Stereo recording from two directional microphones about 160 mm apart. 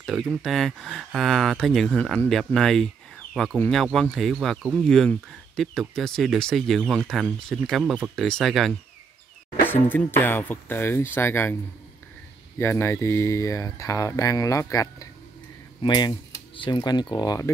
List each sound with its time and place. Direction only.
0.0 s speech: centre (ahead or behind)
9.7 s speech: 10° left (ahead or behind)
12.5 s speech: 15° left (ahead or behind)